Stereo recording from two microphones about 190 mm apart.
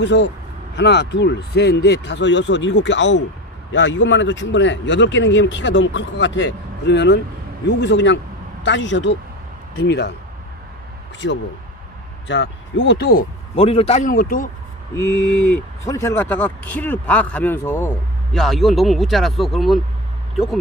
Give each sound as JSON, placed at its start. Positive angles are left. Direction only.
{"t": 0.0, "sound": "speech", "side_deg": 70}
{"t": 11.2, "sound": "speech", "side_deg": 75}
{"t": 13.6, "sound": "a man's voice", "side_deg": 30}
{"t": 15.8, "sound": "speech", "side_deg": 15}